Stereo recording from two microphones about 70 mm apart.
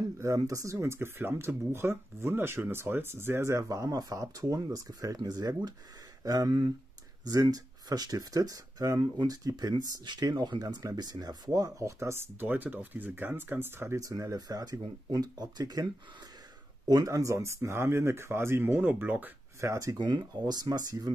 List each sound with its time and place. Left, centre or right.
0.2 s speech: right
0.7 s speech: right
11.0 s speech: right
11.8 s speech: right
13.9 s speech: right
16.8 s speech: right
19.6 s speech: right
20.0 s speech: right